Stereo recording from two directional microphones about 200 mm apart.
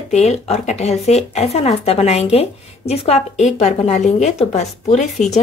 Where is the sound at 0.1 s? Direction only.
35° left (ahead or behind).